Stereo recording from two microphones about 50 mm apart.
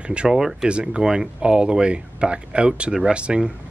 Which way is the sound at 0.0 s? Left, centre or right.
Right.